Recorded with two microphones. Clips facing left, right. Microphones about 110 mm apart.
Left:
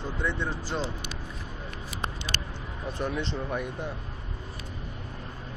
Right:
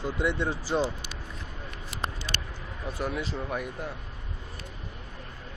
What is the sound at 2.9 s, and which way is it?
Speech, 5° right (ahead or behind).